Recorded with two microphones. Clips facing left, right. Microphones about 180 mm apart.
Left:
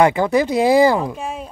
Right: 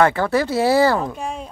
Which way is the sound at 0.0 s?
15° left (ahead or behind).